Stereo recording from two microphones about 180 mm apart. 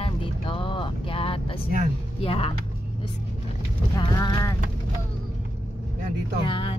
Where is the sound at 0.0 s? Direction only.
30° left (ahead or behind).